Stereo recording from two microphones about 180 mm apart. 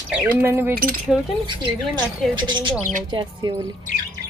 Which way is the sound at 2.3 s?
25° right (ahead or behind).